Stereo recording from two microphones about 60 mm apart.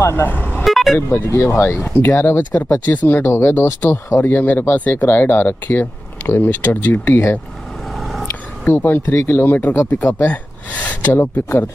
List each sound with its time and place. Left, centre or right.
0.2 s vehicle: left
0.7 s vehicle: centre
0.9 s speech: left
2.0 s speech: left
8.0 s vehicle: centre
8.3 s a sound: left
9.1 s speech: left
10.2 s a sound: left